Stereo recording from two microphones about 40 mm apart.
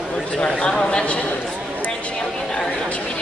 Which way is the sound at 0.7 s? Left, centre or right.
Left.